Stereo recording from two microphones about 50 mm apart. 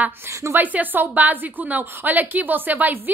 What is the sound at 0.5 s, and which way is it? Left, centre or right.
A woman's voice, right.